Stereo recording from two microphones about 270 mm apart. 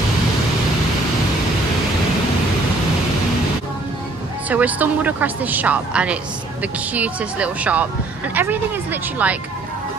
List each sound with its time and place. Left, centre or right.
4.5 s speech: centre